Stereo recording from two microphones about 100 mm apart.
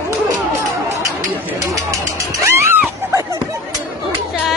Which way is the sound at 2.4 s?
30° right (ahead or behind).